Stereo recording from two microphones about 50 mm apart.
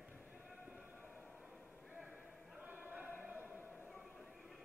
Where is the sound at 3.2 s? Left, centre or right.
Right.